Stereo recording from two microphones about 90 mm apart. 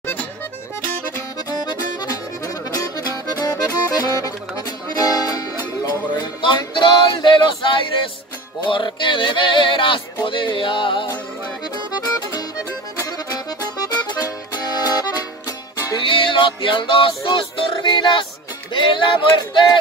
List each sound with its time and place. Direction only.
0.0 s music: 20° left (ahead or behind)
1.6 s music: 50° left (ahead or behind); by 11.1 s 65° left (ahead or behind)
13.0 s music: 40° left (ahead or behind)
14.0 s music: 50° left (ahead or behind)
16.1 s music: 70° left (ahead or behind)